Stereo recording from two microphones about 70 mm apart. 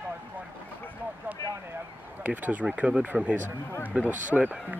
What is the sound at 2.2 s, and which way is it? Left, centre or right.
Speech, right.